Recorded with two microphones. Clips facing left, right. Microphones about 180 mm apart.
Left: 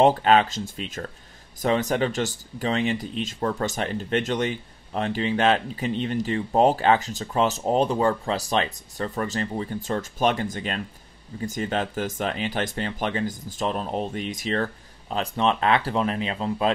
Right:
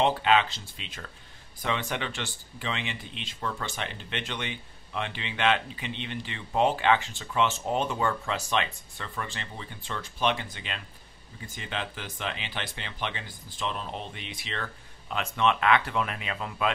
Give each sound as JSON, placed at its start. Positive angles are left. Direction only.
{"t": 0.0, "sound": "speech", "side_deg": 45}